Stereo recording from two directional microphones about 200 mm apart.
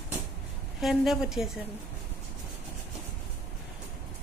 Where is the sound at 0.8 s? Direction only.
Centre (ahead or behind).